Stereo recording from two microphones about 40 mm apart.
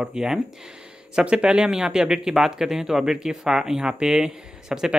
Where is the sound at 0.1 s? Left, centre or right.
Centre.